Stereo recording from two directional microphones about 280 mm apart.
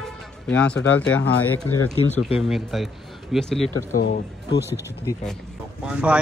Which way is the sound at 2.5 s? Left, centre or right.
Centre.